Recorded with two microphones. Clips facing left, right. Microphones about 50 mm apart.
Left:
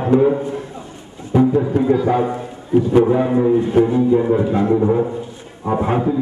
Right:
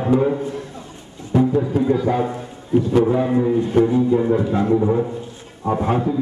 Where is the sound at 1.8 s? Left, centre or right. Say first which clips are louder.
Left 2 dB; centre.